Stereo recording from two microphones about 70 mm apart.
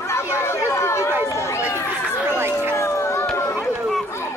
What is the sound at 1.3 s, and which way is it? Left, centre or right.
Run, left.